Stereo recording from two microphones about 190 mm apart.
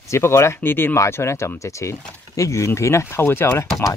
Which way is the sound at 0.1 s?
15° left (ahead or behind).